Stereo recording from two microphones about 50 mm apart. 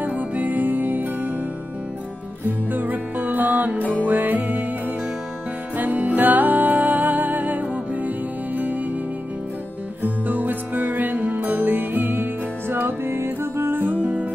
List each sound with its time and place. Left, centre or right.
0.0 s music: right
2.4 s music: right
10.0 s music: right
13.7 s music: right